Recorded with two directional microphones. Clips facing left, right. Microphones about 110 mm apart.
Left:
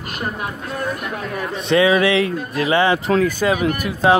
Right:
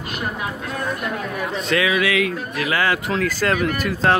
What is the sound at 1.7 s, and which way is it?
Speech, 30° left (ahead or behind).